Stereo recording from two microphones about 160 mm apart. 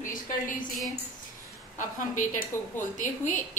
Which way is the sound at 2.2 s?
55° left (ahead or behind).